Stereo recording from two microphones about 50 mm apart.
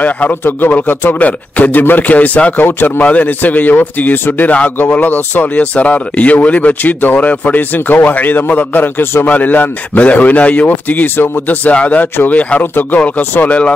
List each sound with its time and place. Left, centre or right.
0.0 s speech: left
5.6 s speech: left